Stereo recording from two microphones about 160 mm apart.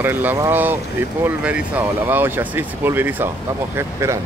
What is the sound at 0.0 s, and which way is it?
Speech, 10° right (ahead or behind).